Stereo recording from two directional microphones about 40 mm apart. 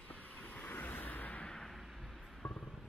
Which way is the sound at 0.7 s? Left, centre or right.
Left.